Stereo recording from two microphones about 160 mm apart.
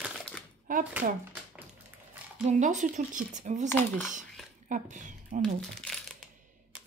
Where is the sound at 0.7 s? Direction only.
55° right (ahead or behind).